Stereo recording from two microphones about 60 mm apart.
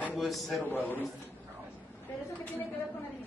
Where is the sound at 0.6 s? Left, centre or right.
Left.